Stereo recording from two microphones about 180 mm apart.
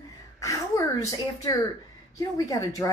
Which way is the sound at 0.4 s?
15° left (ahead or behind).